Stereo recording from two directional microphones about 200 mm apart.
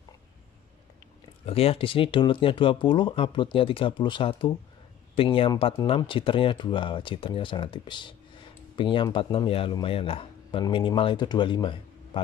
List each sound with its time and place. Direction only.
1.4 s speech: 30° left (ahead or behind)